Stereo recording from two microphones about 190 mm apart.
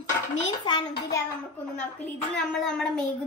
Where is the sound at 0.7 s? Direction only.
20° left (ahead or behind).